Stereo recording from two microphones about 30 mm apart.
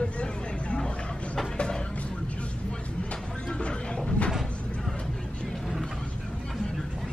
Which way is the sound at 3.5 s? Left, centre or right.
Left.